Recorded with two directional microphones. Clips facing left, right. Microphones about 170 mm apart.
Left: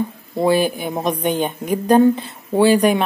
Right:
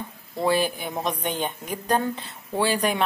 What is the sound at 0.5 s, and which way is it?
A woman's voice, 15° left (ahead or behind).